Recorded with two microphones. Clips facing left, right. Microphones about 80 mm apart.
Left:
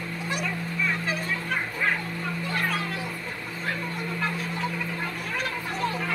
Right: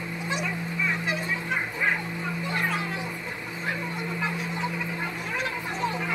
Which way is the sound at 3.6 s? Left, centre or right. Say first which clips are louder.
Even; centre.